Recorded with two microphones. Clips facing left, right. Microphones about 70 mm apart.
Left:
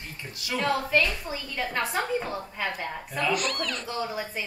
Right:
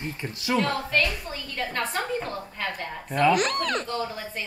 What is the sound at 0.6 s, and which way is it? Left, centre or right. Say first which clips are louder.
A woman's voice: left 1 dB; centre.